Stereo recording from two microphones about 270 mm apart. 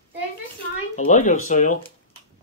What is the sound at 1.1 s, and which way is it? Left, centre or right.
Speech, left.